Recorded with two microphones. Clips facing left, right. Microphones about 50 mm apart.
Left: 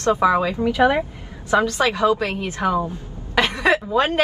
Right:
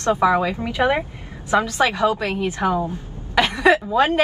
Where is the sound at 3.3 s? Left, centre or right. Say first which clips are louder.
Right 2 dB; centre.